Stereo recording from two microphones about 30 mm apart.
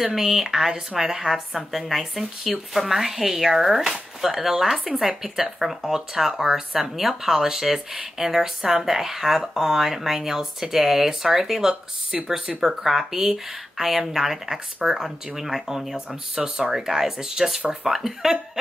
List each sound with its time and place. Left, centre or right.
0.0 s speech: centre